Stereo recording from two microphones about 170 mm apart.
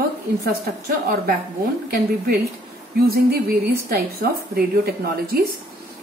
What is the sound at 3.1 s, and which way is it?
A woman's voice, 65° right (ahead or behind).